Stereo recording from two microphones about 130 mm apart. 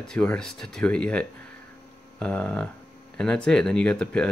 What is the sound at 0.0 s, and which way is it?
Speech, 5° left (ahead or behind).